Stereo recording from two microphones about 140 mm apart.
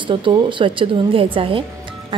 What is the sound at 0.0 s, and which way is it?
A woman's voice, 35° right (ahead or behind).